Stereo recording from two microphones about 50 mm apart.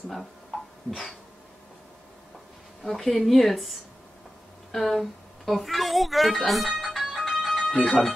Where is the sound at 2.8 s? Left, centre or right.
Centre.